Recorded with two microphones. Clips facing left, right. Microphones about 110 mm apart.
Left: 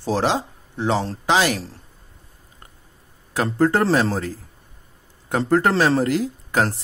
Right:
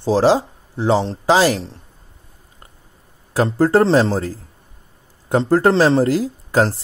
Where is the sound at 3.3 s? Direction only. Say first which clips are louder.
Right 4 dB; 35° right (ahead or behind).